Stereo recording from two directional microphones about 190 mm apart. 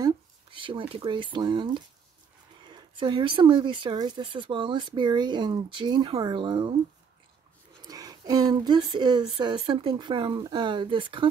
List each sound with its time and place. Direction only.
0.0 s speech: 25° right (ahead or behind)
7.8 s speech: 20° right (ahead or behind)